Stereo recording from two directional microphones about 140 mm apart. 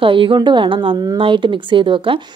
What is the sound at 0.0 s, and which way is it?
A woman's voice, 40° right (ahead or behind).